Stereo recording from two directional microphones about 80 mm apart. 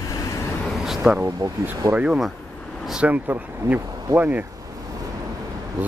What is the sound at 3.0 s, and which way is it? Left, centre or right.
Speech, centre.